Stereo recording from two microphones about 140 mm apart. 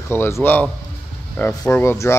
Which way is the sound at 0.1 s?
15° left (ahead or behind).